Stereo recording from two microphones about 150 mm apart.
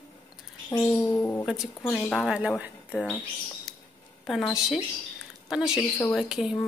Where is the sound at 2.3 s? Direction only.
10° right (ahead or behind).